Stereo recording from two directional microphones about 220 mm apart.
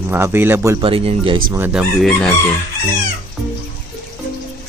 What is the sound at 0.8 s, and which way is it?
Speech, 25° right (ahead or behind).